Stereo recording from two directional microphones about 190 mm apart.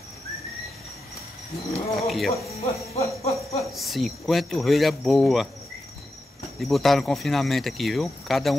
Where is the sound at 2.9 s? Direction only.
35° left (ahead or behind).